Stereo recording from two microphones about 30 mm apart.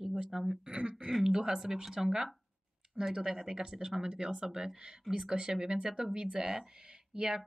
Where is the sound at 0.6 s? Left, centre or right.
Right.